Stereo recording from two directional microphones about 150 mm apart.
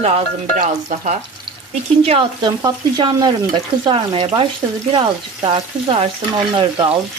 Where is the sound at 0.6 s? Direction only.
60° right (ahead or behind).